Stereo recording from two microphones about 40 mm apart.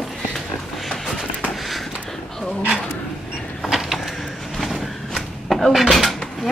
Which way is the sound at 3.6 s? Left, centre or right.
Centre.